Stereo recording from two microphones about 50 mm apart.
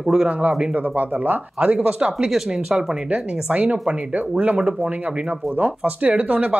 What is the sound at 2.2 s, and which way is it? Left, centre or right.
Speech, centre.